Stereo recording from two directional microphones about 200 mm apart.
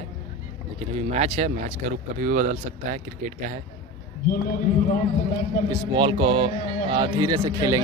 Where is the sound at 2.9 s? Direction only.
40° right (ahead or behind).